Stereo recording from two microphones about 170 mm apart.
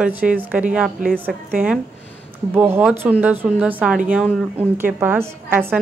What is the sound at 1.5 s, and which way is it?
A woman's voice, 10° right (ahead or behind).